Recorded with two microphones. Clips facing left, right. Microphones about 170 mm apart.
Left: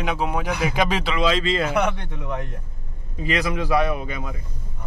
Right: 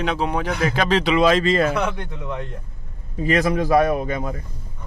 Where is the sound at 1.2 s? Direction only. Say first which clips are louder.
Right 3 dB; 50° right (ahead or behind).